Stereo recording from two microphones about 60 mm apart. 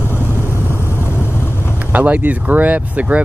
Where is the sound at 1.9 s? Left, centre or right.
Right.